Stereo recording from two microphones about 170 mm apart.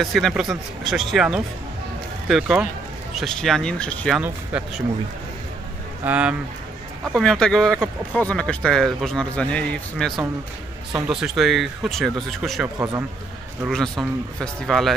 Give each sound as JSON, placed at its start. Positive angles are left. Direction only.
{"t": 0.0, "sound": "speech", "side_deg": 0}
{"t": 4.2, "sound": "speech", "side_deg": -10}
{"t": 6.0, "sound": "speech", "side_deg": -10}
{"t": 12.7, "sound": "a man's voice", "side_deg": -20}
{"t": 13.7, "sound": "speech", "side_deg": 5}